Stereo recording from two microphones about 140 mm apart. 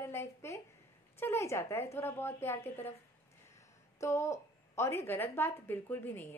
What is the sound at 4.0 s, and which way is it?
Speech, 20° left (ahead or behind).